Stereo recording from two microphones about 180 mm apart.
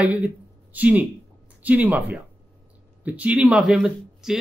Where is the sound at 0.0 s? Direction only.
10° right (ahead or behind).